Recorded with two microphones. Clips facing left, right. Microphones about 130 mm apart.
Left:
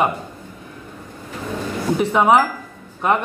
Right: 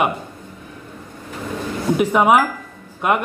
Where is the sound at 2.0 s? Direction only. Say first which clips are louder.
Right 1 dB; 10° right (ahead or behind).